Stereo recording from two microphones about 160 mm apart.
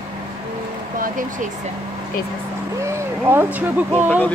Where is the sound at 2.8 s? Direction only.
15° right (ahead or behind).